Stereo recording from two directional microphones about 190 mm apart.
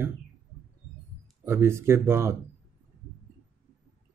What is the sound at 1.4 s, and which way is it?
Speech, 15° right (ahead or behind).